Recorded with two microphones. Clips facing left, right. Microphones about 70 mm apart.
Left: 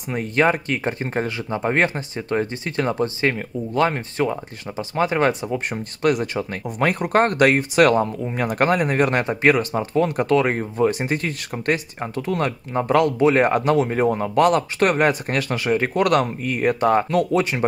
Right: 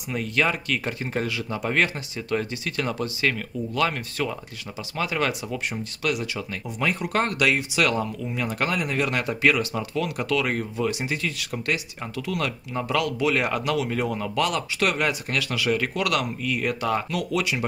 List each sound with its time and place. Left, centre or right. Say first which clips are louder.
0.1 s speech: left 5 dB; left